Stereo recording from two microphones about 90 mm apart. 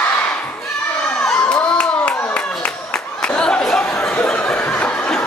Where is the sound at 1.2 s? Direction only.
10° left (ahead or behind).